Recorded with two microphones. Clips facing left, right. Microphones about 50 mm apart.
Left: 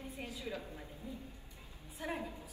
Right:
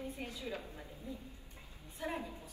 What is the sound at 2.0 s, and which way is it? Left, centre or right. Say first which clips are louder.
Speech: even; left.